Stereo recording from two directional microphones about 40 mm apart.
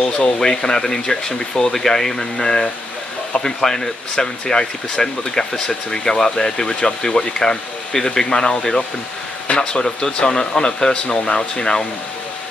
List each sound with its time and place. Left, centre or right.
0.4 s speech: centre